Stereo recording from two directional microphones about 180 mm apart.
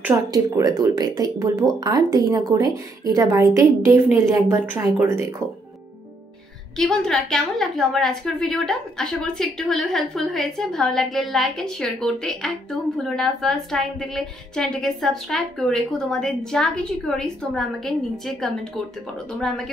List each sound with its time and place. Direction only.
0.0 s speech: 15° right (ahead or behind)
6.8 s a woman's voice: 5° left (ahead or behind)
19.3 s a woman's voice: 5° left (ahead or behind)